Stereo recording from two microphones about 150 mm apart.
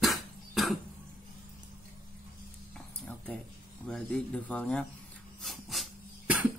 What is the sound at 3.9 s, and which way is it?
Speech, 5° left (ahead or behind).